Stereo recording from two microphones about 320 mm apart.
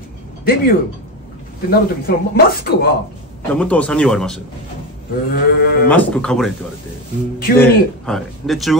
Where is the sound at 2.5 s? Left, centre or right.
Left.